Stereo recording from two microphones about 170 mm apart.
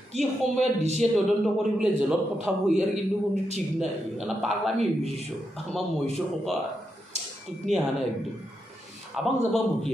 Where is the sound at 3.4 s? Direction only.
40° right (ahead or behind).